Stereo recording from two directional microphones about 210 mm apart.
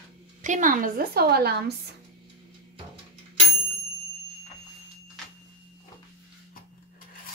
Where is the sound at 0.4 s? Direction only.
35° right (ahead or behind).